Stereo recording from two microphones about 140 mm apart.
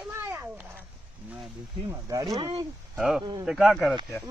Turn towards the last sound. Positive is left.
turn(degrees=0)  # may be behind; listen again after turning